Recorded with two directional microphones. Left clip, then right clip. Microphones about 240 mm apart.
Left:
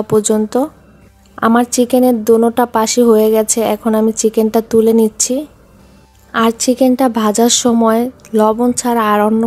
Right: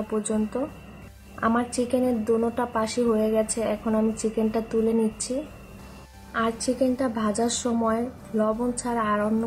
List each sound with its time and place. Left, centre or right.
0.1 s speech: left
6.3 s speech: left